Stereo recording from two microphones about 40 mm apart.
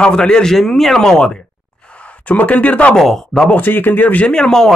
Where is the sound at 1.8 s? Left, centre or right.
Left.